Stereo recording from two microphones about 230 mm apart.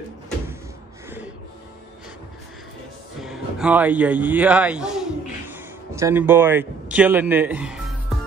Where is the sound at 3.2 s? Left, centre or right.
Centre.